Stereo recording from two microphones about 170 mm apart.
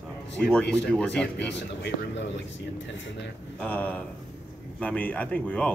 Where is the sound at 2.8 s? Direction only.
90° left.